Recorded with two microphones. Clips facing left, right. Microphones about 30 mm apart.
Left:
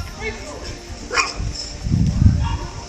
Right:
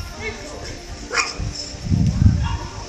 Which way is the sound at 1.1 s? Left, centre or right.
Centre.